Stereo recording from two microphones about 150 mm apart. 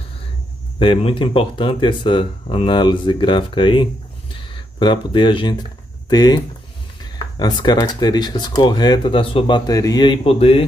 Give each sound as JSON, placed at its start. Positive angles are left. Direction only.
{"t": 0.7, "sound": "speech", "side_deg": 35}